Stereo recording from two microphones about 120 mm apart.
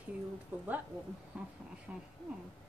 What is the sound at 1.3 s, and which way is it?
Speech, 10° right (ahead or behind).